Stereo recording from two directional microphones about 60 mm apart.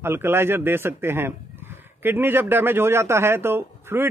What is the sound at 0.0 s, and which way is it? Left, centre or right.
Speech, right.